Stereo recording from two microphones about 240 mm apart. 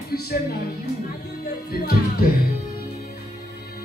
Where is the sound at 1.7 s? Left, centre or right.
Left.